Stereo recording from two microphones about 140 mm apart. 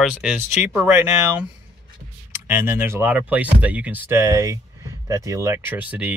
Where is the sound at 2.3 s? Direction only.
15° right (ahead or behind).